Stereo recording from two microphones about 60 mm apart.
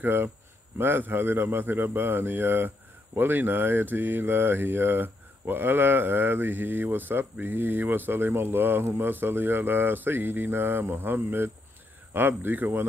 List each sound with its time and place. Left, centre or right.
0.0 s speech: right